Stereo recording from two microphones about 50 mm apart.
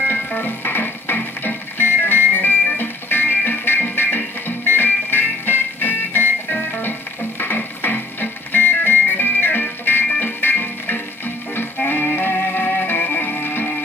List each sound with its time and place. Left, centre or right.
0.1 s music: left